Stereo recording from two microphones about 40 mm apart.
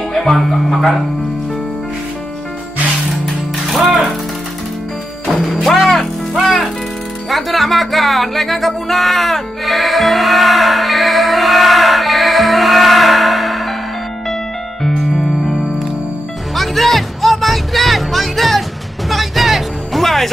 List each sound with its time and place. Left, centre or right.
0.2 s speech: centre
3.7 s music: centre
5.8 s speech: centre
6.3 s music: centre
14.8 s music: centre
16.5 s music: centre